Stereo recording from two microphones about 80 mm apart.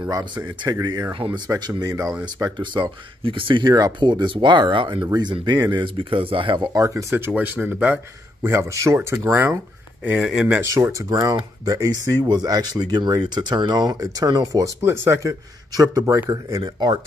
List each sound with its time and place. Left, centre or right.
0.4 s speech: right
1.2 s speech: right
1.6 s speech: right
4.0 s speech: right
5.7 s speech: right
6.9 s speech: right
7.3 s speech: centre
8.5 s speech: right
10.1 s speech: centre
10.6 s speech: right
14.8 s speech: right
15.7 s speech: right
16.6 s speech: right